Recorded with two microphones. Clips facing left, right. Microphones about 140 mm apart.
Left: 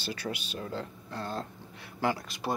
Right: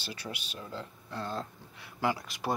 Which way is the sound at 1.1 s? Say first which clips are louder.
Even; 45° left (ahead or behind).